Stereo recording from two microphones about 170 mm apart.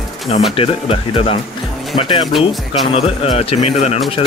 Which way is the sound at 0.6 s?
35° left (ahead or behind).